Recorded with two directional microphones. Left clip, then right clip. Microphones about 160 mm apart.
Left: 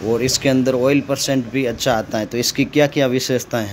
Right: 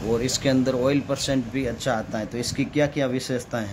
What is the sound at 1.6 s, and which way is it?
Speech, 35° left (ahead or behind).